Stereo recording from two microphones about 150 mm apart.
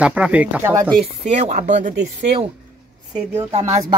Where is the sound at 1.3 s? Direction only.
50° right (ahead or behind).